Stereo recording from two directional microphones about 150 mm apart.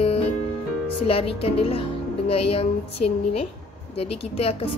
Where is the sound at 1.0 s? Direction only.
40° left (ahead or behind).